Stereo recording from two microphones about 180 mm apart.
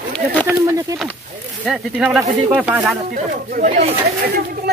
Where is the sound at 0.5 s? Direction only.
15° right (ahead or behind).